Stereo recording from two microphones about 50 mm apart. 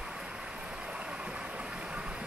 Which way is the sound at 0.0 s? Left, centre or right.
Centre.